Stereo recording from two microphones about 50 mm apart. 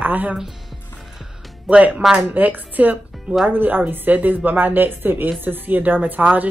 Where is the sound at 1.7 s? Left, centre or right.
Right.